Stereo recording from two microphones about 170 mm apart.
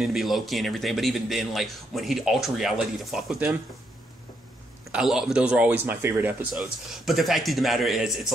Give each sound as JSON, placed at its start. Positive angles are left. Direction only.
{"t": 0.0, "sound": "a man's voice", "side_deg": 0}
{"t": 4.9, "sound": "speech", "side_deg": 0}
{"t": 6.5, "sound": "a man's voice", "side_deg": 0}